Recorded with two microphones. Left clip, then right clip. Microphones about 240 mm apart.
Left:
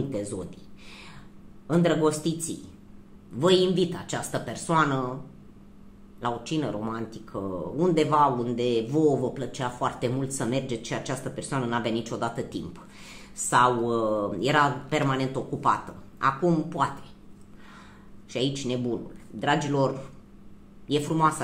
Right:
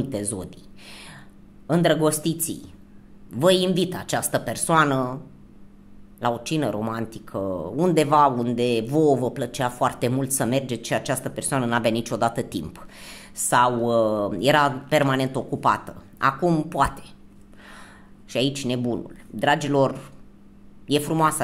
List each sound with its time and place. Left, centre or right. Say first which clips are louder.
0.1 s speech: right 2 dB; right
6.1 s speech: right 5 dB; right
18.3 s speech: right 4 dB; right